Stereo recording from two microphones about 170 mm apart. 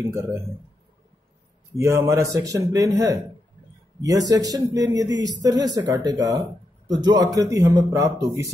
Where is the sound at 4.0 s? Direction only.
20° right (ahead or behind).